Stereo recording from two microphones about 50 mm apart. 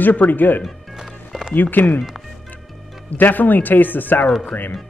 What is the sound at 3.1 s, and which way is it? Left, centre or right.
Speech, left.